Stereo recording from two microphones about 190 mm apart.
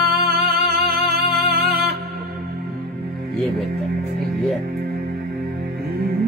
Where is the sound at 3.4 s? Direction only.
Centre (ahead or behind).